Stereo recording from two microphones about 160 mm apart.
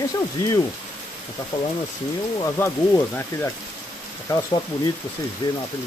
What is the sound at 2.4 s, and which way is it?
Speech, 15° left (ahead or behind).